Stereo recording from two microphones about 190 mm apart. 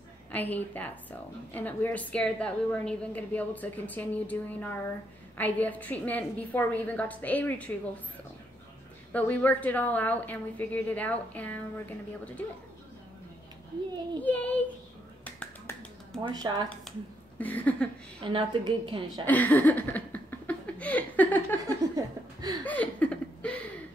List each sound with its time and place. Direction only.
0.3 s a woman's voice: 10° left (ahead or behind)
9.1 s a woman's voice: 10° left (ahead or behind)
14.2 s a woman's voice: 10° left (ahead or behind)
15.2 s finger snapping: 5° left (ahead or behind)
16.2 s a woman's voice: 25° right (ahead or behind)
16.9 s a woman's voice: centre (ahead or behind)
18.2 s a woman's voice: 25° right (ahead or behind)
19.2 s a sound: 10° left (ahead or behind)
21.9 s a woman's voice: 20° right (ahead or behind)
22.7 s a woman's voice: 5° left (ahead or behind)